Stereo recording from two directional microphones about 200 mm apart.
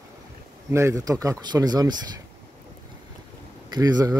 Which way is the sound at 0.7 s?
15° right (ahead or behind).